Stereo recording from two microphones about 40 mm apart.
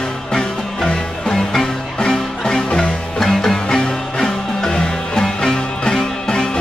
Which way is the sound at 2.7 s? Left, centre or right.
Left.